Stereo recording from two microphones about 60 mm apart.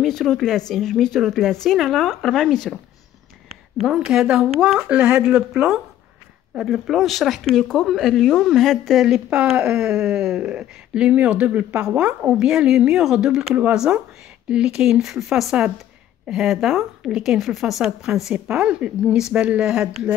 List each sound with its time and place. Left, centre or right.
0.0 s speech: centre
3.8 s speech: centre
9.0 s speech: centre
18.3 s speech: centre